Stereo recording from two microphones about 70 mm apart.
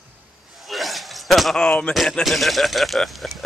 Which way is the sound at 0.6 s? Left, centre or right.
Centre.